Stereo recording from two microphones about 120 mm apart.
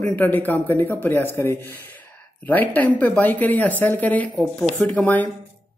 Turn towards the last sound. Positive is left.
turn(degrees=15)  # may be behind; listen again after turning